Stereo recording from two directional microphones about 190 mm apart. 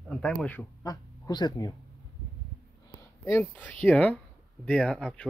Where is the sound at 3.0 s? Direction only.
15° left (ahead or behind).